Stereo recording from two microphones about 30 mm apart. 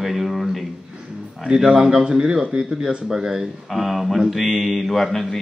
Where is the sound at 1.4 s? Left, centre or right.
Right.